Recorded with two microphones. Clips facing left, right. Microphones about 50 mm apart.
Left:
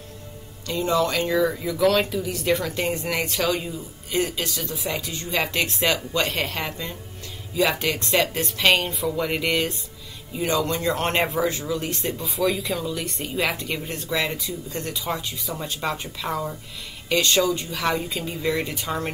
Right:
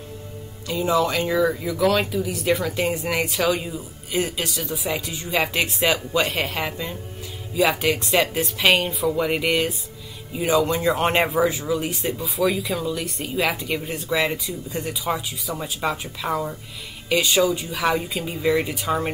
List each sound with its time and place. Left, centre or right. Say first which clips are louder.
0.7 s speech: right 1 dB; centre